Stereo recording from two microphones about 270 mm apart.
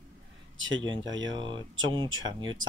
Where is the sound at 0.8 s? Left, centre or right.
Centre.